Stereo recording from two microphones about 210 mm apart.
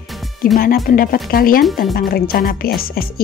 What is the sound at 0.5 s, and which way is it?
Speech, 45° left (ahead or behind).